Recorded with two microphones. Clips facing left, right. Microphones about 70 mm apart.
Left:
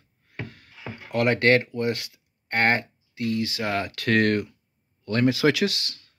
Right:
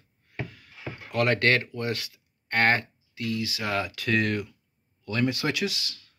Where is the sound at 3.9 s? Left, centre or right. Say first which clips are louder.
Left 5 dB; left.